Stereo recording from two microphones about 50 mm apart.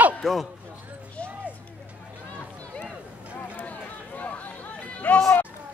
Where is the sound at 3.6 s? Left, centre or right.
Left.